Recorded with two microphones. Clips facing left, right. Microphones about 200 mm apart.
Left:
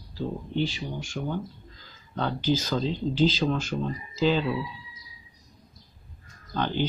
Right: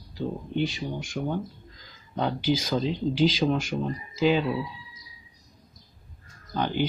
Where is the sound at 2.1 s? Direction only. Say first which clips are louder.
Right 1 dB; 10° right (ahead or behind).